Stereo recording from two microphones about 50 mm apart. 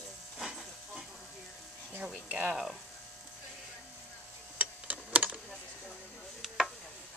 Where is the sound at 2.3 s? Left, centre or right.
Right.